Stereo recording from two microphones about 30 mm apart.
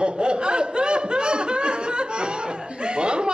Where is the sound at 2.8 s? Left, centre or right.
Right.